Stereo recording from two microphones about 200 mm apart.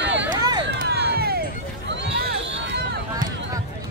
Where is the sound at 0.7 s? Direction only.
55° right (ahead or behind).